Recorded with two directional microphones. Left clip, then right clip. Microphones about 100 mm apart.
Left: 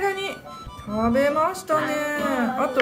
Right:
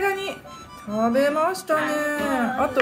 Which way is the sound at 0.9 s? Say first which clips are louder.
Even; 20° right (ahead or behind).